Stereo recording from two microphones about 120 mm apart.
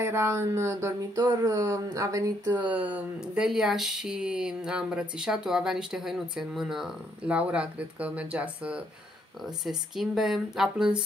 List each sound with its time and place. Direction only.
0.0 s mantra: 20° right (ahead or behind)
2.5 s speech: 15° right (ahead or behind)